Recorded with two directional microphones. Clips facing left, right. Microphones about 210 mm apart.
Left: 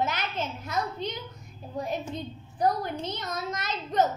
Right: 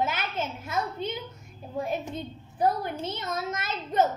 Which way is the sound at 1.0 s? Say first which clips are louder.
Right 1 dB; 55° right (ahead or behind).